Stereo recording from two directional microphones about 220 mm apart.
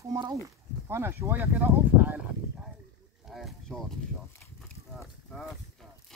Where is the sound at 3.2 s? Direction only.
Centre (ahead or behind).